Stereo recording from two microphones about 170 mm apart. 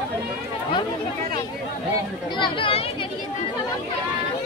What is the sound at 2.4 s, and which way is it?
Speech, 30° left (ahead or behind).